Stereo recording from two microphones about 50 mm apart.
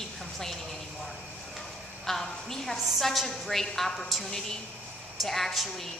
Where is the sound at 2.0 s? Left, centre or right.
Centre.